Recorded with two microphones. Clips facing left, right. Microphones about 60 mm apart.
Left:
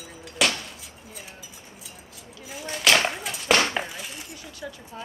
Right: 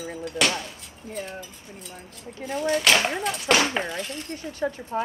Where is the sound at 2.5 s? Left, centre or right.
Centre.